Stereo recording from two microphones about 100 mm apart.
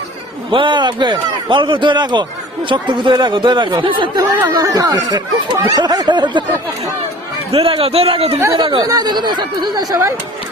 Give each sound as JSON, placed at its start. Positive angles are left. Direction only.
{"t": 0.5, "sound": "a man's voice", "side_deg": -55}
{"t": 4.4, "sound": "a man's voice", "side_deg": -40}
{"t": 7.5, "sound": "a man's voice", "side_deg": -70}
{"t": 8.5, "sound": "a man's voice", "side_deg": -50}